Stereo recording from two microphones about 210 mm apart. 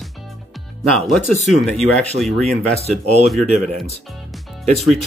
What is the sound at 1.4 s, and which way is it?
Speech, centre (ahead or behind).